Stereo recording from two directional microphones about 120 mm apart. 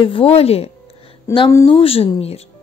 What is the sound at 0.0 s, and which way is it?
Speech, 50° left (ahead or behind).